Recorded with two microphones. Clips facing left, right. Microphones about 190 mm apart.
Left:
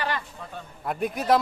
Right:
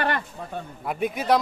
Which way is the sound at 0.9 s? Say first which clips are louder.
Even; centre (ahead or behind).